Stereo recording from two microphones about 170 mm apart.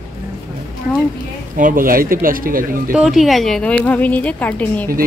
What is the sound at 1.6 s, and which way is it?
Speech, 55° right (ahead or behind).